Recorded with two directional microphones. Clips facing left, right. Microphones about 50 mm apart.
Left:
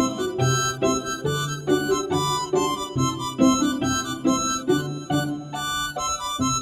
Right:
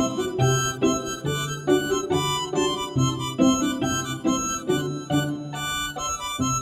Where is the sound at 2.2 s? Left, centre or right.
Right.